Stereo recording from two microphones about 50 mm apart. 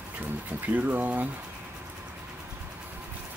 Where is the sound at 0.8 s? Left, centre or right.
Right.